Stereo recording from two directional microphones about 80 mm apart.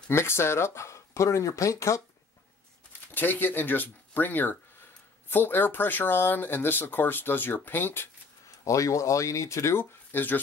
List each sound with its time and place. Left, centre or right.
0.1 s speech: left
3.2 s speech: left
8.6 s speech: left